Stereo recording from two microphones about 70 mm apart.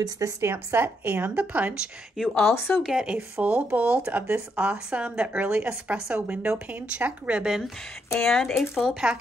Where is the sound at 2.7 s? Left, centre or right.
Centre.